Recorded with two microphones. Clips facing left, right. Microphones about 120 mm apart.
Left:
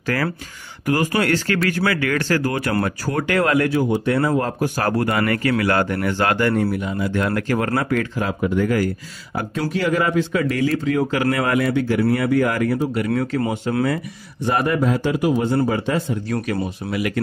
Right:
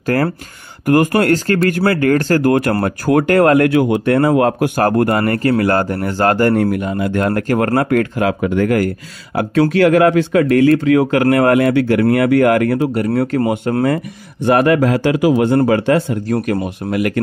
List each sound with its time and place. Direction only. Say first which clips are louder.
0.0 s a man's voice: right 6 dB; 45° right (ahead or behind)
6.7 s speech: right 5 dB; 55° right (ahead or behind)
12.9 s a man's voice: right 5 dB; 40° right (ahead or behind)
14.4 s a man's voice: right 7 dB; 70° right (ahead or behind)
16.9 s speech: right 6 dB; 55° right (ahead or behind)